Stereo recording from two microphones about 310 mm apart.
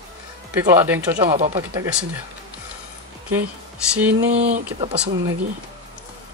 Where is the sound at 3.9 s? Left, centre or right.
Centre.